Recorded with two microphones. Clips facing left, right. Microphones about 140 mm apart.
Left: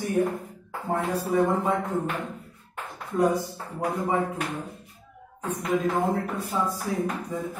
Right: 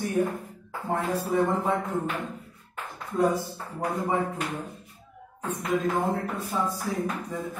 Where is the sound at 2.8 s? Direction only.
15° left (ahead or behind).